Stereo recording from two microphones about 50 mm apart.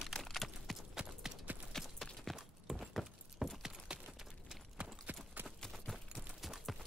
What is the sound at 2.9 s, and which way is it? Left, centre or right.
Keys jangling, centre.